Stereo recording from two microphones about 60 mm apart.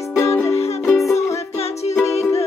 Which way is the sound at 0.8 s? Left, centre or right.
Centre.